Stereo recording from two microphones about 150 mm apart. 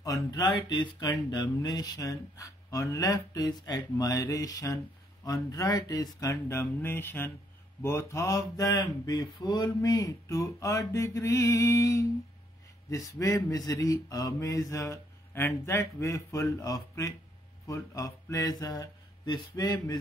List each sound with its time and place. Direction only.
0.0 s speech: 25° left (ahead or behind)
17.6 s mantra: 20° left (ahead or behind)